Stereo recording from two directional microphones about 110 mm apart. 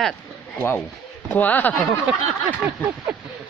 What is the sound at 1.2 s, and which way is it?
Speech, 15° left (ahead or behind).